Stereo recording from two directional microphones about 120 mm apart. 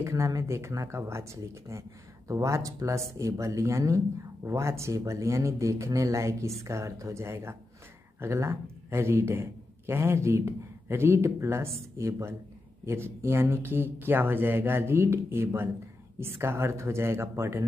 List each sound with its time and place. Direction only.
0.0 s a man's voice: 25° right (ahead or behind)